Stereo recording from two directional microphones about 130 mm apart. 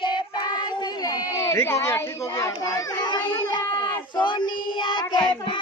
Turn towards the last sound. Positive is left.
turn(degrees=40)  # may be behind; listen again after turning